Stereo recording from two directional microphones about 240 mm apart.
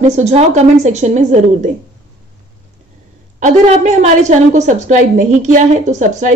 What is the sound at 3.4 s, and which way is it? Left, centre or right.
A woman's voice, right.